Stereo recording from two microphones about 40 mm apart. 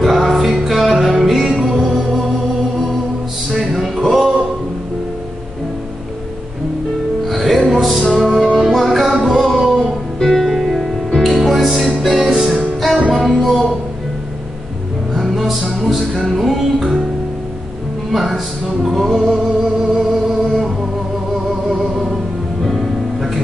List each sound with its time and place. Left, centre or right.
0.0 s music: centre
3.5 s music: centre
7.2 s music: centre
10.1 s music: centre
10.4 s music: centre
12.3 s music: centre
13.1 s music: centre
15.1 s music: centre
18.1 s music: centre